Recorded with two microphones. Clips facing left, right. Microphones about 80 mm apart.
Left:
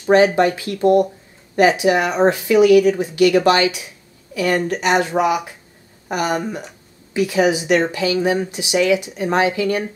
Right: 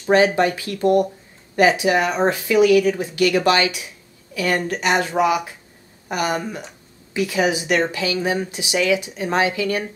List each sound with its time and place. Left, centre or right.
0.5 s a woman's voice: centre